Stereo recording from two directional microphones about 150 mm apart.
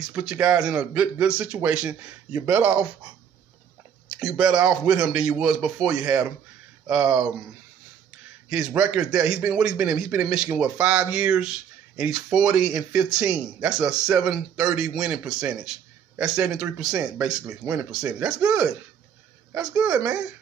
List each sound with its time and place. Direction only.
0.1 s speech: 5° right (ahead or behind)
4.2 s speech: 5° right (ahead or behind)
7.0 s speech: 20° right (ahead or behind)
8.6 s speech: 5° right (ahead or behind)